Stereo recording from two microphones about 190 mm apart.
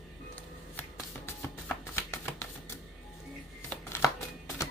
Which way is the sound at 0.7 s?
10° left (ahead or behind).